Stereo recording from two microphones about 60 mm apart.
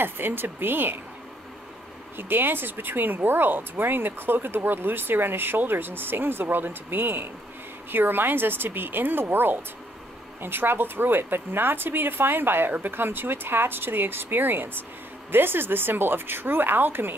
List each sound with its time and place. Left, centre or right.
0.0 s speech: right
2.1 s speech: right